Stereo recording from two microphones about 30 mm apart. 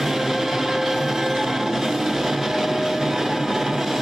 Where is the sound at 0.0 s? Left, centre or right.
Centre.